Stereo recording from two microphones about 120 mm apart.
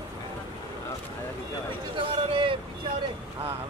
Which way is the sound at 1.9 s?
45° right (ahead or behind).